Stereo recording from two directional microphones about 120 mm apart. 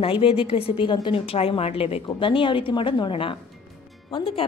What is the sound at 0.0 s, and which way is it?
A woman's voice, 50° left (ahead or behind).